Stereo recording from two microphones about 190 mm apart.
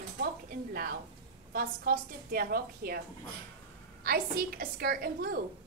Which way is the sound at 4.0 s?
50° right (ahead or behind).